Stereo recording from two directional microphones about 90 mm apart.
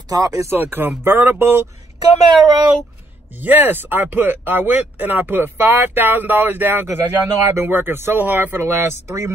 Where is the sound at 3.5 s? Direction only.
20° right (ahead or behind).